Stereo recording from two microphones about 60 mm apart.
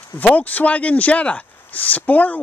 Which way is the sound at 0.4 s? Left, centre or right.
Left.